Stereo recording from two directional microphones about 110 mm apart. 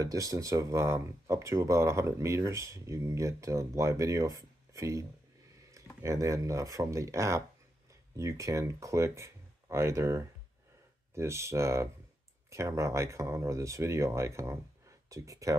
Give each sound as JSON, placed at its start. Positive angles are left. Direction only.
{"t": 0.0, "sound": "speech", "side_deg": -30}